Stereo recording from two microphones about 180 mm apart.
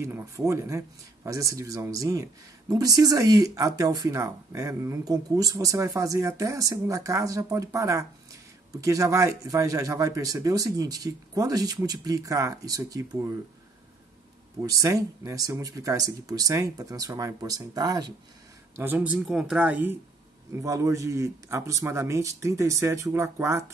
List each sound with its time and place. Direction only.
0.0 s a man's voice: 15° right (ahead or behind)
14.6 s speech: 20° right (ahead or behind)
18.8 s a man's voice: 10° right (ahead or behind)